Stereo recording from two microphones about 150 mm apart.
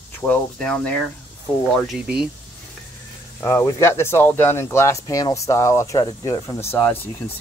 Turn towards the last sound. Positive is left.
turn(degrees=15)  # may be behind; listen again after turning